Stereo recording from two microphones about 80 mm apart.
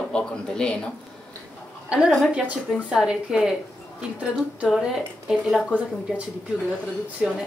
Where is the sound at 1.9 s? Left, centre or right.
Centre.